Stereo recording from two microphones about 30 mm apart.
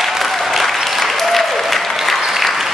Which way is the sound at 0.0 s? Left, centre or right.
Centre.